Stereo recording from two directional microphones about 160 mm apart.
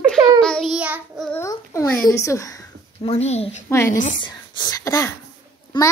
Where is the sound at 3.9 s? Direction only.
55° left (ahead or behind).